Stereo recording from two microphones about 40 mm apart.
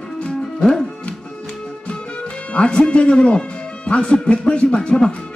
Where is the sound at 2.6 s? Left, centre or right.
Left.